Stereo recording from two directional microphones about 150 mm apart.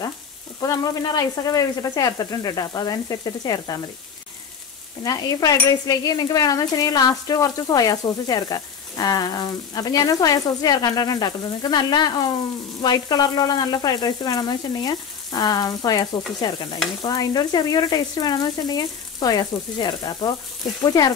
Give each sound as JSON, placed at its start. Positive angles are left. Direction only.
{"t": 0.6, "sound": "stir", "side_deg": 25}
{"t": 5.0, "sound": "stir", "side_deg": 25}